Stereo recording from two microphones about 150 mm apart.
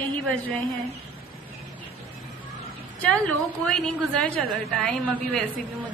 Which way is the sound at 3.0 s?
5° left (ahead or behind).